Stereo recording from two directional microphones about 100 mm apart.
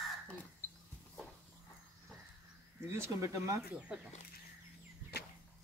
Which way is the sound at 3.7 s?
10° right (ahead or behind).